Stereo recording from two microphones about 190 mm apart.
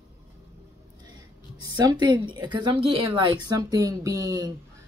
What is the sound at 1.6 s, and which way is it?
Speech, 20° right (ahead or behind).